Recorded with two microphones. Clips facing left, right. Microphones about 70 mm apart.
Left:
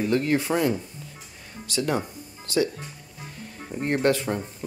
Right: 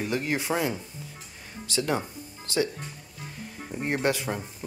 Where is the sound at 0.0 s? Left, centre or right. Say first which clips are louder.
Left 5 dB; centre.